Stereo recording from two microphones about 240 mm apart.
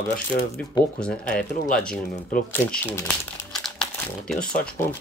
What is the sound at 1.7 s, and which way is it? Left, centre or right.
Speech, centre.